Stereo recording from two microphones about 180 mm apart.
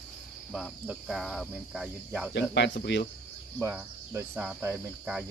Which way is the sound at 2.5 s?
80° left.